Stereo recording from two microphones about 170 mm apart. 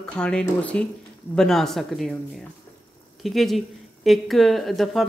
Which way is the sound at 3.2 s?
Centre (ahead or behind).